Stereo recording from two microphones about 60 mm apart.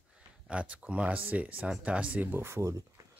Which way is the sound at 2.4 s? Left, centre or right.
Right.